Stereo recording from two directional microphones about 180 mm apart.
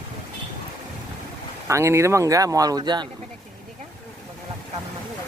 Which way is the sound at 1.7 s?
15° right (ahead or behind).